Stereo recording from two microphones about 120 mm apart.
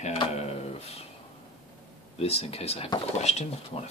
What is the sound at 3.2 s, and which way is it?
Speech, 70° left (ahead or behind).